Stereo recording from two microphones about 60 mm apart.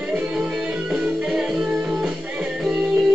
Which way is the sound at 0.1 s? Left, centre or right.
Centre.